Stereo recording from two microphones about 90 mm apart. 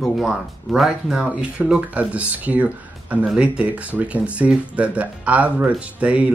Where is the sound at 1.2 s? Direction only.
15° right (ahead or behind).